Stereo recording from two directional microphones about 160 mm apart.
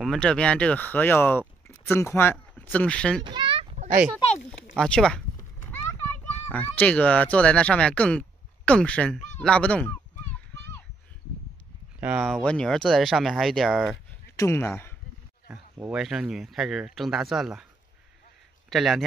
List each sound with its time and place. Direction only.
0.0 s speech: 5° left (ahead or behind)
3.3 s a sound: 30° right (ahead or behind)
3.7 s a sound: 50° right (ahead or behind)
4.5 s a sound: 5° left (ahead or behind)
6.5 s speech: 10° left (ahead or behind)
9.4 s honk: 5° left (ahead or behind)
12.0 s speech: 5° right (ahead or behind)
12.4 s speech: 5° left (ahead or behind)
14.3 s speech: 20° left (ahead or behind)
15.4 s speech: 10° right (ahead or behind)
18.7 s speech: centre (ahead or behind)